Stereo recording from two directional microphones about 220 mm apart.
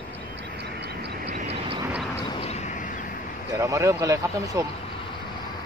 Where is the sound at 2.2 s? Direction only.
25° left (ahead or behind).